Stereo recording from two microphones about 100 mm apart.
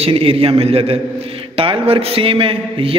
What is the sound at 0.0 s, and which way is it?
A man's voice, 70° right (ahead or behind).